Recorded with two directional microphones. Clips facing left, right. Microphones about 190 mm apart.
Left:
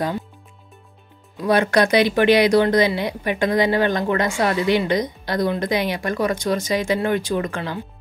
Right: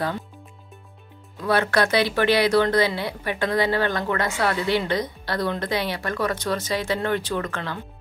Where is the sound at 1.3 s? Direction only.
15° left (ahead or behind).